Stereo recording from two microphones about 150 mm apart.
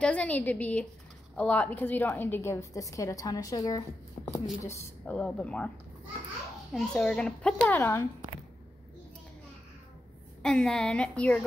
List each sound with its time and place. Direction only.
0.0 s a woman's voice: 10° left (ahead or behind)
6.7 s a child's voice: 5° left (ahead or behind)
10.4 s a child's voice: 5° left (ahead or behind)